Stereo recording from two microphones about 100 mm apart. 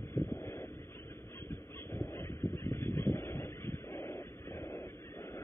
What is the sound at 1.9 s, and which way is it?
Dog, 25° left (ahead or behind).